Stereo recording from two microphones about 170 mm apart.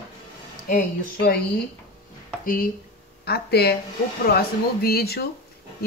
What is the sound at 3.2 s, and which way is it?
Speech, 70° left (ahead or behind).